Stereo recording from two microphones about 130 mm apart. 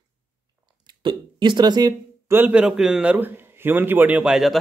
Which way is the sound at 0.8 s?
35° right (ahead or behind).